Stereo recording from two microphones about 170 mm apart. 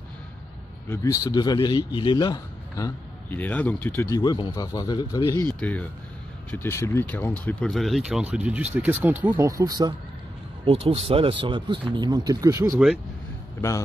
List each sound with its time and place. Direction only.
0.8 s a man's voice: 15° left (ahead or behind)
4.2 s speech: 25° left (ahead or behind)
5.6 s speech: 10° left (ahead or behind); by 9.5 s 10° right (ahead or behind)
9.5 s speech: 20° right (ahead or behind)
10.6 s speech: 35° right (ahead or behind); by 12.7 s 20° right (ahead or behind)
12.7 s speech: 5° right (ahead or behind)
13.6 s speech: 15° left (ahead or behind)